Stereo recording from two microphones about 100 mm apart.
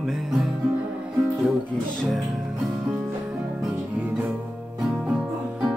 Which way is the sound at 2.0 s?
Centre (ahead or behind).